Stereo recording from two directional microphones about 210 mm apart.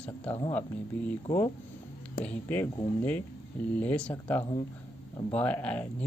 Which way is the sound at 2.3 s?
10° left (ahead or behind).